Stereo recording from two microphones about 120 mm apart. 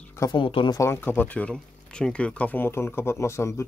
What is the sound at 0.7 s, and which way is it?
Speech, 20° left (ahead or behind).